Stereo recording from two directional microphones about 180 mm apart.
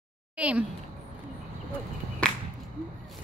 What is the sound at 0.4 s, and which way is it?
Speech, 5° right (ahead or behind).